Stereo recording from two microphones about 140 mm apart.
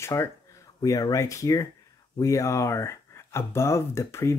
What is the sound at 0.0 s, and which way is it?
Speech, 20° left (ahead or behind).